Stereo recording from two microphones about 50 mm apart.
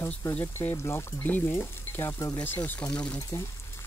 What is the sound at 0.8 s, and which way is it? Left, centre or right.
Speech, left.